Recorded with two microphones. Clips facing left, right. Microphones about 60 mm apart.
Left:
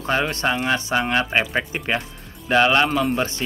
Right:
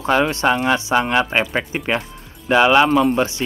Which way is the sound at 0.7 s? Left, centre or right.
Centre.